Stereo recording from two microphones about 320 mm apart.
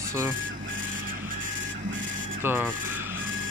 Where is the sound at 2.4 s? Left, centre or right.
Centre.